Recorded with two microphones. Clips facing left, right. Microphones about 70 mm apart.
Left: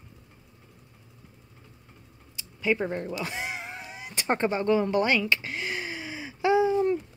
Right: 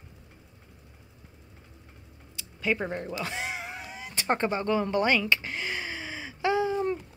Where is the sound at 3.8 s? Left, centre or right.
Centre.